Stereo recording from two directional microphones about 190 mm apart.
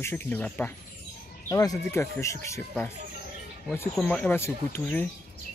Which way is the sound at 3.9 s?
5° left (ahead or behind).